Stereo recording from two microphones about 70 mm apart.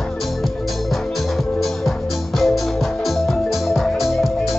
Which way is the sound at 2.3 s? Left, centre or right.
Centre.